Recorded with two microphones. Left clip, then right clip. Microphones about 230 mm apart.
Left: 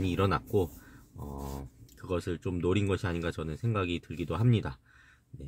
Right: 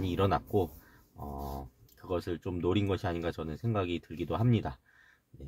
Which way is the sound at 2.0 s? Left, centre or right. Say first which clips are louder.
Left 1 dB; centre.